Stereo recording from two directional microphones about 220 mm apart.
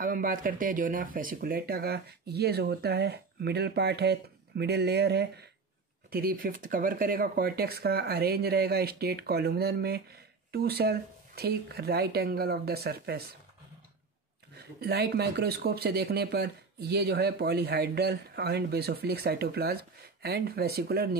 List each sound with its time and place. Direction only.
0.0 s speech: 40° right (ahead or behind)
14.6 s speech: 45° right (ahead or behind)